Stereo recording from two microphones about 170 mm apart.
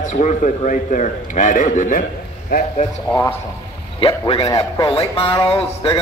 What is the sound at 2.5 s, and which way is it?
Speech, 65° left (ahead or behind).